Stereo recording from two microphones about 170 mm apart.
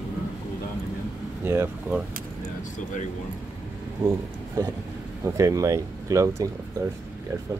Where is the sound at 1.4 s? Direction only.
15° right (ahead or behind).